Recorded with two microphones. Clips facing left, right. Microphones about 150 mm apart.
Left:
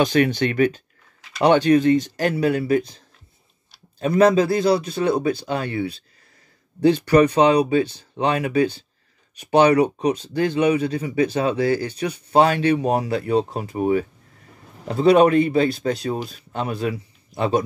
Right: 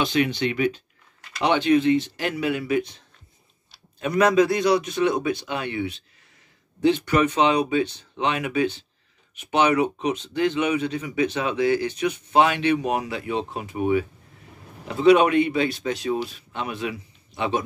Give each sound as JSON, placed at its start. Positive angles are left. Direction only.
{"t": 0.0, "sound": "speech", "side_deg": 45}
{"t": 4.0, "sound": "speech", "side_deg": 30}